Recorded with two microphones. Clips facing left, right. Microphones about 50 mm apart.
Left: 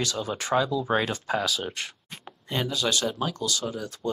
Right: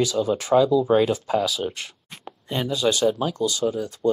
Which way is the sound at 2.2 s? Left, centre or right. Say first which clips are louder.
Right 2 dB; centre.